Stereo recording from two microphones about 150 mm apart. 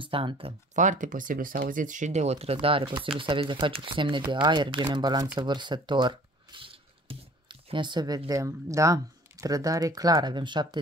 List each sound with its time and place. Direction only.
0.0 s speech: 35° right (ahead or behind)
0.7 s speech: 55° right (ahead or behind); by 10.8 s 30° right (ahead or behind)